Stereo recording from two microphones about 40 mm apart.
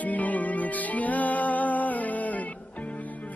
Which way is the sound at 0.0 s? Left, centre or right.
Left.